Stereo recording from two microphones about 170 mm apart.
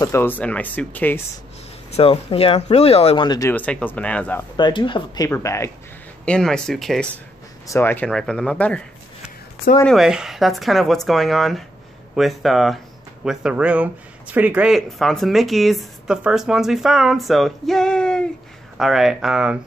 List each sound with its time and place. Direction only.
0.0 s speech: 15° left (ahead or behind)
1.9 s speech: 35° left (ahead or behind)
3.3 s speech: 15° left (ahead or behind)
4.6 s speech: 25° left (ahead or behind)
6.2 s speech: 5° left (ahead or behind)
7.6 s speech: 15° left (ahead or behind)
9.8 s speech: 5° right (ahead or behind)